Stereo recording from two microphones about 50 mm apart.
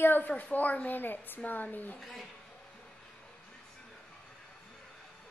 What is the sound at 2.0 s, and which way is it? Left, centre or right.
Speech, centre.